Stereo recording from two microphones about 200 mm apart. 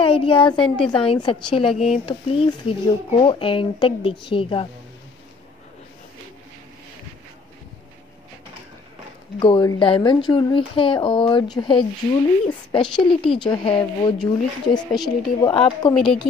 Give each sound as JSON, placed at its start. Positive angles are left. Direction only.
{"t": 0.0, "sound": "a woman's voice", "side_deg": 25}
{"t": 1.7, "sound": "speech", "side_deg": 0}
{"t": 2.0, "sound": "speech", "side_deg": 25}
{"t": 9.4, "sound": "speech", "side_deg": 20}
{"t": 14.1, "sound": "speech", "side_deg": 5}
{"t": 15.4, "sound": "speech", "side_deg": 20}
{"t": 15.9, "sound": "speech", "side_deg": 0}